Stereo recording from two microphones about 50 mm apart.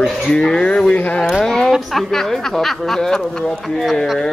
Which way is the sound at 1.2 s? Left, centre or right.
Centre.